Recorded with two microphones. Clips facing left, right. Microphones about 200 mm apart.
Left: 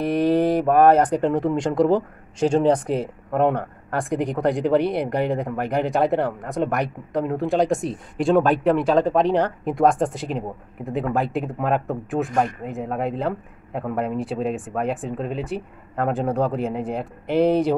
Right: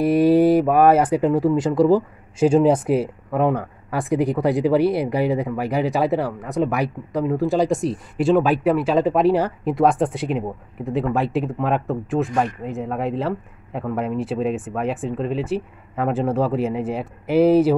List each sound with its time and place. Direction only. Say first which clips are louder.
0.0 s speech: right 4 dB; 5° right (ahead or behind)